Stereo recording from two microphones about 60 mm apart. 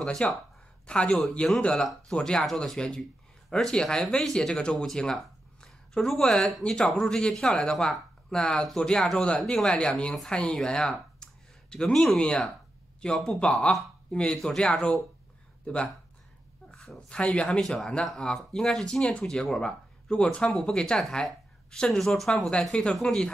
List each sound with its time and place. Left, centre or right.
0.0 s speech: centre
12.2 s speech: centre
13.4 s speech: centre
17.6 s speech: centre